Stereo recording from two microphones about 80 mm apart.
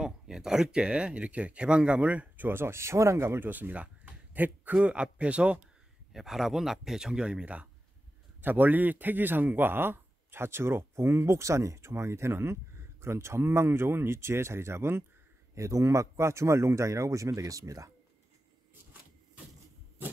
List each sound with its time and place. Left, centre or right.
0.0 s speech: centre
6.1 s speech: centre; by 17.9 s right